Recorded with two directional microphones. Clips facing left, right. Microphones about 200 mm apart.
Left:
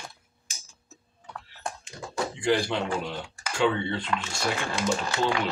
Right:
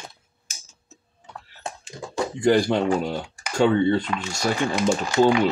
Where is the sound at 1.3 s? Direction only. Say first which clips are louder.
Right 1 dB; 25° right (ahead or behind).